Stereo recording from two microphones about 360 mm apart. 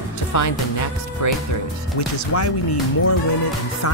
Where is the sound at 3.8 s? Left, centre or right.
Left.